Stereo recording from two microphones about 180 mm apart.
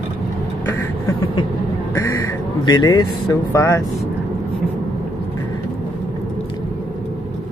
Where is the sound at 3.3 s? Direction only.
15° left (ahead or behind).